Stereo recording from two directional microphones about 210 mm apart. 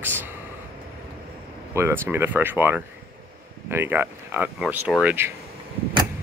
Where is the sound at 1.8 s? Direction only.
10° right (ahead or behind).